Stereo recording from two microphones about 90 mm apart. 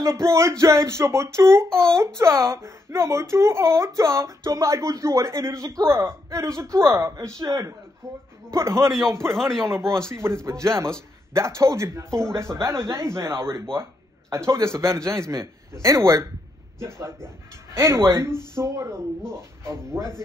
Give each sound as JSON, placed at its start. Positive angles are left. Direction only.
{"t": 0.0, "sound": "speech", "side_deg": -30}
{"t": 1.7, "sound": "a child's voice", "side_deg": 5}
{"t": 2.1, "sound": "speech", "side_deg": -30}
{"t": 9.3, "sound": "speech", "side_deg": 5}
{"t": 9.7, "sound": "speech", "side_deg": -30}